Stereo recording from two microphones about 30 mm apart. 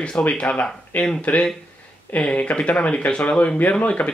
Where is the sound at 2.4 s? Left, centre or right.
Left.